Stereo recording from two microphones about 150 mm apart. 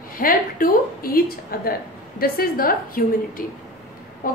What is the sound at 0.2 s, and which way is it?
A woman's voice, 70° left (ahead or behind).